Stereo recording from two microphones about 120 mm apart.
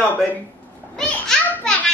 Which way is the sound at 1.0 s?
5° left (ahead or behind).